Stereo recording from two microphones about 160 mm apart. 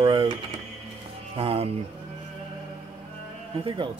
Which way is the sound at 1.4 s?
35° right (ahead or behind).